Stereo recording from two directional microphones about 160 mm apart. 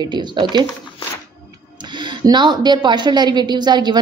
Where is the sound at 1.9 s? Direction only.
30° right (ahead or behind).